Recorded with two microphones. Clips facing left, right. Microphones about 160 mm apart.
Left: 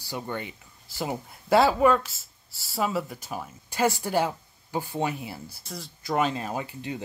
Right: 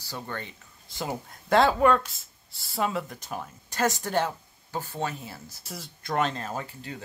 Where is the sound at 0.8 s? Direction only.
5° left (ahead or behind).